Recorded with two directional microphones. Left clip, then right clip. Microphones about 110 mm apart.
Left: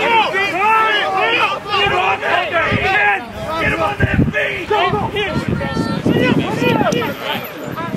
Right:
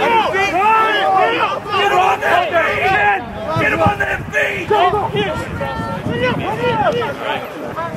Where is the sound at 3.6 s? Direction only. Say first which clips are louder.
Right 3 dB; 25° right (ahead or behind).